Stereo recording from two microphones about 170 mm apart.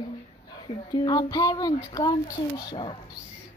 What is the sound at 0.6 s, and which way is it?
A child's voice, 25° left (ahead or behind).